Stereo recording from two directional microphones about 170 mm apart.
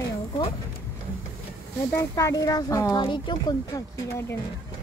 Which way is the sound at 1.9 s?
20° left (ahead or behind).